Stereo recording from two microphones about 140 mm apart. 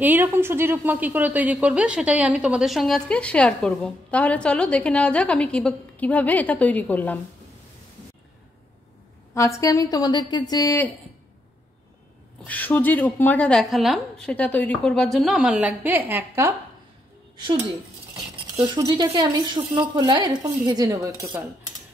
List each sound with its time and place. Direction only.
0.0 s a woman's voice: 15° right (ahead or behind); by 7.2 s 10° left (ahead or behind)
9.3 s a woman's voice: 20° left (ahead or behind)
12.4 s a woman's voice: 10° left (ahead or behind); by 16.5 s 15° right (ahead or behind)
18.8 s a woman's voice: 25° right (ahead or behind)